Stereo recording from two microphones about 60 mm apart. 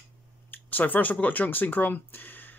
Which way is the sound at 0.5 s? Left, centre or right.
Left.